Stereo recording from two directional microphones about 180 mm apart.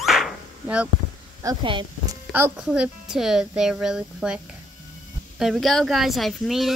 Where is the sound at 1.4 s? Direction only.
25° right (ahead or behind).